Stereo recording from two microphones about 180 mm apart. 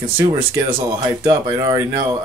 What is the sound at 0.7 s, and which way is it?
Speech, 25° right (ahead or behind).